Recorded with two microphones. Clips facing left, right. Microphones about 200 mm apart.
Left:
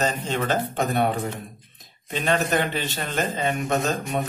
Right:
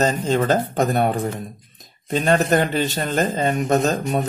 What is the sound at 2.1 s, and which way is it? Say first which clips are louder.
A man's voice: right 5 dB; 40° right (ahead or behind).